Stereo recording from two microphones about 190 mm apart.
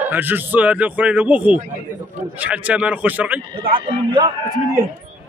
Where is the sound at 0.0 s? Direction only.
10° right (ahead or behind).